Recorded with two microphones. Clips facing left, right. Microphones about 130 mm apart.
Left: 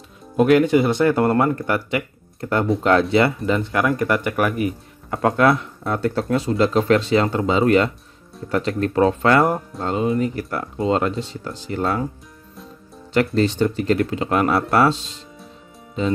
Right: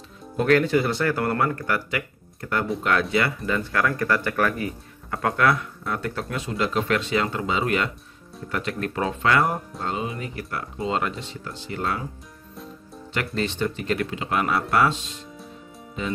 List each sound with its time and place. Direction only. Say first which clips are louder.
0.4 s speech: left 5 dB; 15° left (ahead or behind); by 12.0 s 40° left (ahead or behind)
13.1 s speech: left 9 dB; 35° left (ahead or behind)